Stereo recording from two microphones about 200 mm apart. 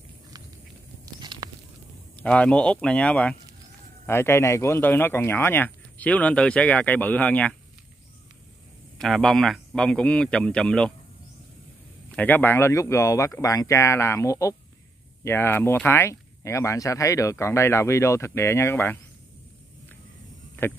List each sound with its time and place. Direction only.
1.0 s a sound: 20° right (ahead or behind)
2.2 s a man's voice: 5° left (ahead or behind)
8.9 s a man's voice: centre (ahead or behind)
12.1 s speech: 10° left (ahead or behind)